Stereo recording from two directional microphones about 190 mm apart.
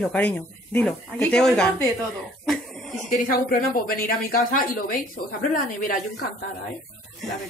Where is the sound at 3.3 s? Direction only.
50° left (ahead or behind).